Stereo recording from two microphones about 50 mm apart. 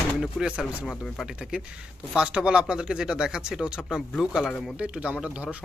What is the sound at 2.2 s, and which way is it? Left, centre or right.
Speech, right.